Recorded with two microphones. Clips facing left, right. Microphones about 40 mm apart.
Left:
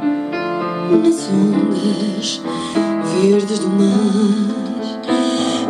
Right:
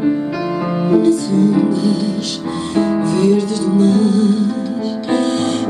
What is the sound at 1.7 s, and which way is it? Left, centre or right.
Music, left.